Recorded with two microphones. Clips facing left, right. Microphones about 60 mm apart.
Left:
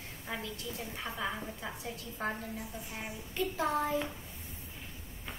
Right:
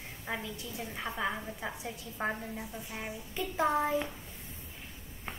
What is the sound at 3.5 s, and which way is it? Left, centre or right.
Speech, right.